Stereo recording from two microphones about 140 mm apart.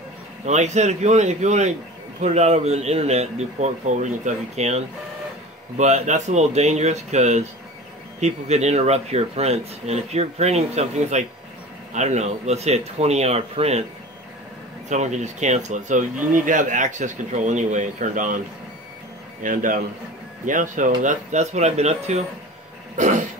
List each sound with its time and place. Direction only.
0.5 s speech: 55° right (ahead or behind)
14.9 s speech: 55° right (ahead or behind)
19.4 s a man's voice: 70° right (ahead or behind); by 22.2 s 50° right (ahead or behind)
22.9 s throat clearing: 60° right (ahead or behind)